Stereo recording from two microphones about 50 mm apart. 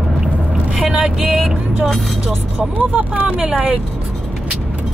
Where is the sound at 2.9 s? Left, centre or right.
Right.